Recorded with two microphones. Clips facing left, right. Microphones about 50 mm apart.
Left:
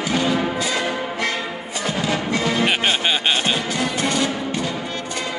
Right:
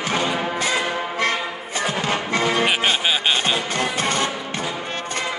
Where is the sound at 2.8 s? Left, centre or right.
Centre.